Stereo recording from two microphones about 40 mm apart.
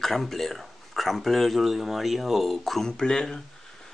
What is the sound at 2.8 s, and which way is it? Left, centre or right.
Speech, centre.